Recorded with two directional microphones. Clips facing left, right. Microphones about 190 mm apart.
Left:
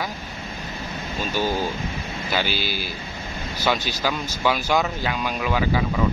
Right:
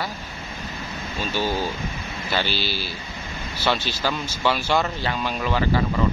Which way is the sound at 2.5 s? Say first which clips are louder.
Even; 50° left (ahead or behind).